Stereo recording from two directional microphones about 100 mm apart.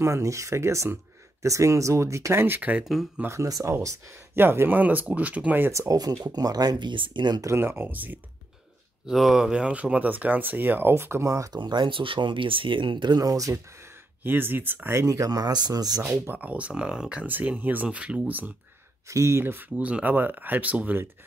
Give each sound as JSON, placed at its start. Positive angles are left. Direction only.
{"t": 0.0, "sound": "speech", "side_deg": -30}
{"t": 2.8, "sound": "speech", "side_deg": 0}
{"t": 3.3, "sound": "speech", "side_deg": -35}
{"t": 4.4, "sound": "speech", "side_deg": -20}
{"t": 5.7, "sound": "speech", "side_deg": -35}
{"t": 7.4, "sound": "speech", "side_deg": -25}
{"t": 9.0, "sound": "speech", "side_deg": -5}
{"t": 11.6, "sound": "speech", "side_deg": -50}
{"t": 14.2, "sound": "speech", "side_deg": -20}
{"t": 16.0, "sound": "speech", "side_deg": -20}
{"t": 19.0, "sound": "speech", "side_deg": -30}